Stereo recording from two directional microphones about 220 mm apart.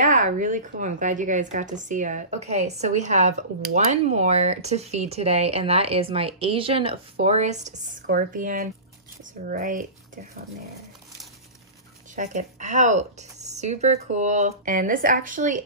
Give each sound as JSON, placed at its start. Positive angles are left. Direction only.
{"t": 0.0, "sound": "a woman's voice", "side_deg": -35}
{"t": 12.2, "sound": "a woman's voice", "side_deg": -35}